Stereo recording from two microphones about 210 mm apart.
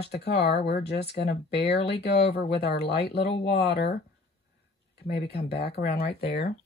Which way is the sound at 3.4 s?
50° left (ahead or behind).